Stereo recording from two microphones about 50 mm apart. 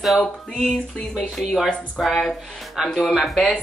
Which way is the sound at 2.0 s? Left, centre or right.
Centre.